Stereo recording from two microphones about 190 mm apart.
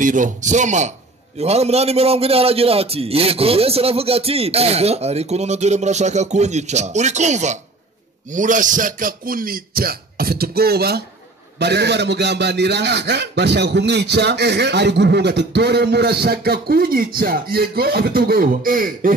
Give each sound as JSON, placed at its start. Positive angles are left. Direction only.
{"t": 0.0, "sound": "a man's voice", "side_deg": -45}